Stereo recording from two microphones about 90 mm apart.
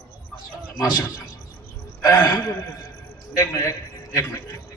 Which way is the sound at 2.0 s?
45° left (ahead or behind).